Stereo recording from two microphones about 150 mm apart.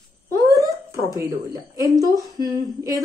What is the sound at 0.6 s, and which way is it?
Speech, 20° right (ahead or behind).